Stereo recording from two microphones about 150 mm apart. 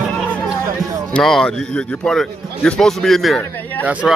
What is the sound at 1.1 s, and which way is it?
A man's voice, 5° left (ahead or behind).